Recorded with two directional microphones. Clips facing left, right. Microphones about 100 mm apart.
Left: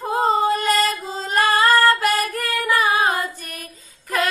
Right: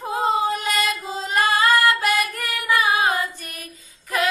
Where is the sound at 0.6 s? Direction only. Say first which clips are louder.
Left 4 dB; 35° left (ahead or behind).